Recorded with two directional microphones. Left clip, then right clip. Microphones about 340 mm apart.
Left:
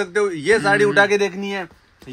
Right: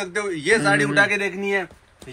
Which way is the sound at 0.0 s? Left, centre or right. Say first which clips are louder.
Left 5 dB; left.